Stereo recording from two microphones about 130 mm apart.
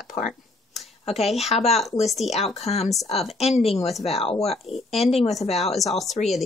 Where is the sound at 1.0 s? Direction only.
55° left (ahead or behind).